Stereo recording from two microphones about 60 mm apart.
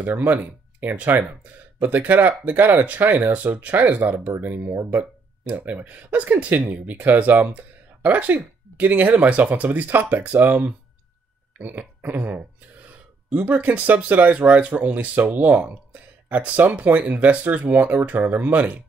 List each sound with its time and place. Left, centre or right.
0.2 s speech: right